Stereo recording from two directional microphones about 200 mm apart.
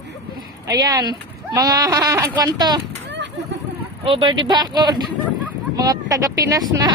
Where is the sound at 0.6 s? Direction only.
20° right (ahead or behind).